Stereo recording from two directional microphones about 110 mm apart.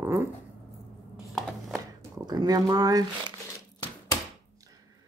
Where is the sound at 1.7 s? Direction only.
35° right (ahead or behind).